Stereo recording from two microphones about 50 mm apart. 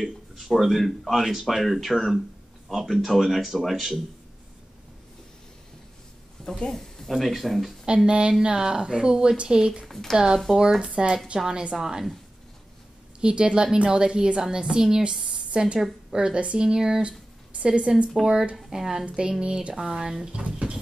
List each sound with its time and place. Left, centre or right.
0.0 s speech: centre
6.4 s speech: centre
7.8 s speech: centre
9.8 s speech: centre
10.1 s a woman's voice: centre
13.2 s a woman's voice: right